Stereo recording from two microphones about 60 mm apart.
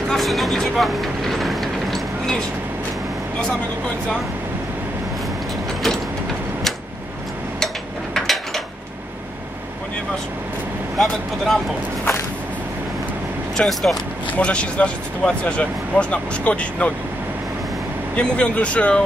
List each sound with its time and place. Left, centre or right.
0.1 s vehicle: centre
7.6 s a sound: centre
11.0 s speech: centre
13.6 s speech: centre
14.4 s speech: centre
18.1 s speech: centre